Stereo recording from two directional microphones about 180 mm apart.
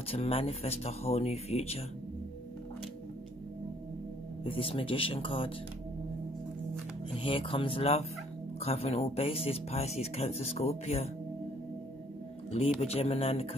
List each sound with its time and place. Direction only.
0.1 s speech: 30° left (ahead or behind)
4.5 s speech: 30° left (ahead or behind)
7.2 s fowl: 30° left (ahead or behind)
8.5 s speech: 35° left (ahead or behind)
12.4 s speech: 35° left (ahead or behind)